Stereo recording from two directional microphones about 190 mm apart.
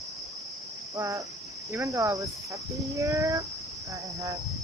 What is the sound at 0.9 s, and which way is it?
Cricket, 15° right (ahead or behind).